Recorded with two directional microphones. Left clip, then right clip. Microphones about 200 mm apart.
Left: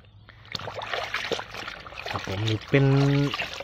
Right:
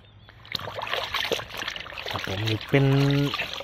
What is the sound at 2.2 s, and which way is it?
Speech, 5° right (ahead or behind).